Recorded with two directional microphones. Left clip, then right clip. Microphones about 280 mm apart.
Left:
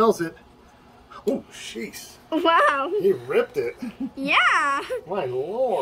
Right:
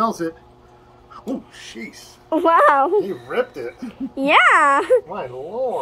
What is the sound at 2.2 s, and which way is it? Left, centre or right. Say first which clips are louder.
Speech: right 5 dB; centre.